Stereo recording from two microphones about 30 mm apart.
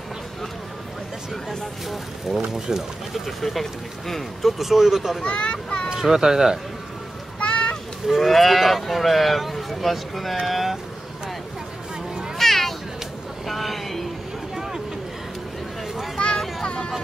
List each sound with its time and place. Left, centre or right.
2.2 s speech: centre
3.1 s speech: centre
5.2 s a child's voice: left
6.0 s speech: centre
7.4 s a sound: left
8.1 s speech: centre
12.4 s cat: centre
13.5 s a sound: centre
14.5 s vehicle: centre
16.2 s vehicle: left